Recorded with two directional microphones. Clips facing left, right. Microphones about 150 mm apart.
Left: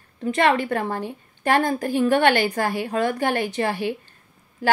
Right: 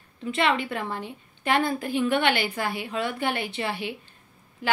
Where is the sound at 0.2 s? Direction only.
45° left (ahead or behind).